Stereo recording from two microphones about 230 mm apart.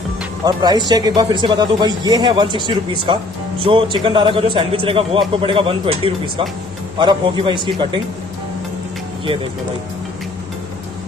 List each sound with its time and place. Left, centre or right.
0.5 s speech: centre